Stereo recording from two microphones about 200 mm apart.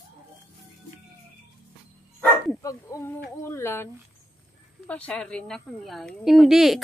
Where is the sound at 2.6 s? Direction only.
15° left (ahead or behind).